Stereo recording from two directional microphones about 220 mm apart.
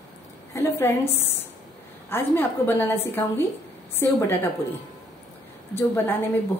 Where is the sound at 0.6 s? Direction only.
10° left (ahead or behind).